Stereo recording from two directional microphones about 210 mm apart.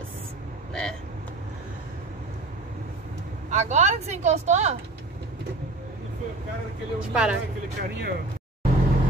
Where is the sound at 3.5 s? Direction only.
35° right (ahead or behind).